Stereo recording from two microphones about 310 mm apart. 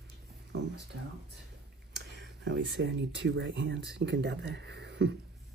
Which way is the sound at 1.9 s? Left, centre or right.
Right.